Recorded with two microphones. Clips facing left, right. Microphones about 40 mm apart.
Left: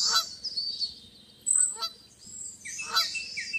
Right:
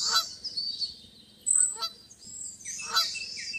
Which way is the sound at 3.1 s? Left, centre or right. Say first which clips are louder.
Left 3 dB; left.